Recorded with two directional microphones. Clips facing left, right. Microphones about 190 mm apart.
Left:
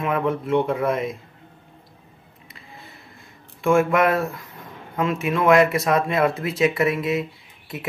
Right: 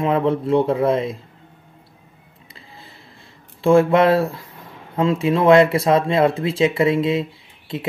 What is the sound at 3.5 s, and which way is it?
Speech, 30° right (ahead or behind).